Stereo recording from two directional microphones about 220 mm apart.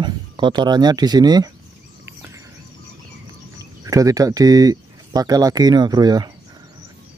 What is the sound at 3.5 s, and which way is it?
Speech, 15° right (ahead or behind).